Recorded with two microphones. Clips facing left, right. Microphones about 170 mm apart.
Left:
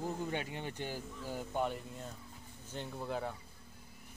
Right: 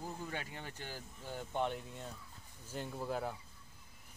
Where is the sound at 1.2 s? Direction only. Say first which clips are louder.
Left 1 dB; 5° left (ahead or behind).